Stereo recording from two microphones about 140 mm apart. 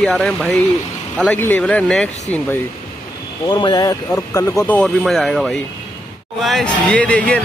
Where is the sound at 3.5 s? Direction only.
30° left (ahead or behind).